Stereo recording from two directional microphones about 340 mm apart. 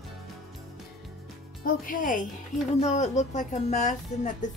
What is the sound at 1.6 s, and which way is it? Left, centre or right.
Speech, left.